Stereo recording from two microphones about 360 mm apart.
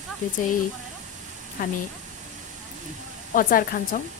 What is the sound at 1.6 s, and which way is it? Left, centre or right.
Speech, left.